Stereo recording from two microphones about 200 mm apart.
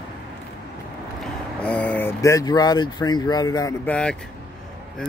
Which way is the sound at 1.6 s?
5° left (ahead or behind).